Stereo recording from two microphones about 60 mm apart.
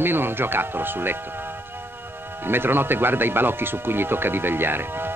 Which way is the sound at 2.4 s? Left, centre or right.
Right.